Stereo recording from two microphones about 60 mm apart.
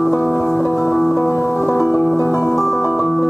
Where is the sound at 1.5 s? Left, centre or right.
Left.